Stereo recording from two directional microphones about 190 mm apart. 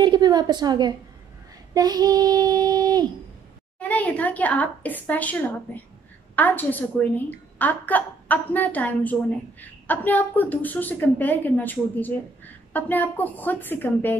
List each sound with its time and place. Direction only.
0.0 s a woman's voice: 20° right (ahead or behind)
1.7 s child singing: 20° right (ahead or behind)
3.8 s a woman's voice: 10° left (ahead or behind)